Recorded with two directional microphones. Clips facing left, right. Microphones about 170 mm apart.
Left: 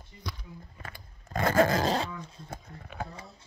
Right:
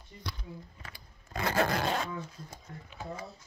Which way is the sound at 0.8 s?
50° left (ahead or behind).